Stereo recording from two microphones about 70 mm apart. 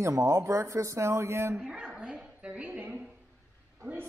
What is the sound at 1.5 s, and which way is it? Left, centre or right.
Speech, centre.